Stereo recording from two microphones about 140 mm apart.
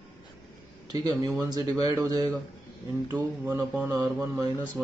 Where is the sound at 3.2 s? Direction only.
15° right (ahead or behind).